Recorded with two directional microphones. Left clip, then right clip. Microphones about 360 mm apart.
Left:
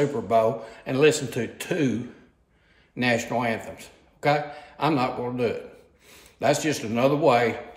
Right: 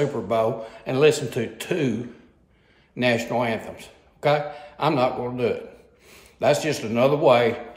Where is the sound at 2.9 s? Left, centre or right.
Centre.